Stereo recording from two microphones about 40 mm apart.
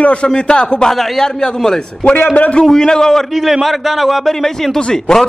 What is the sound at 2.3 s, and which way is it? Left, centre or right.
Speech, left.